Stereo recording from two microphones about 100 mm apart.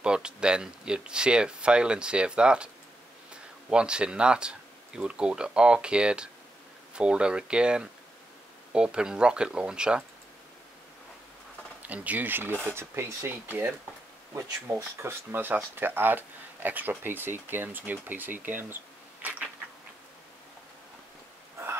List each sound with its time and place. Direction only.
0.0 s speech: 10° right (ahead or behind)
3.7 s speech: 10° right (ahead or behind)
11.8 s speech: 15° right (ahead or behind)
19.2 s a sound: 15° right (ahead or behind)